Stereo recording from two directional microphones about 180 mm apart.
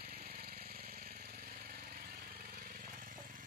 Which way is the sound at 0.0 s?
55° right (ahead or behind).